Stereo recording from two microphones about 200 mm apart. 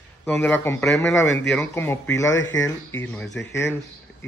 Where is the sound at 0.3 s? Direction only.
10° left (ahead or behind).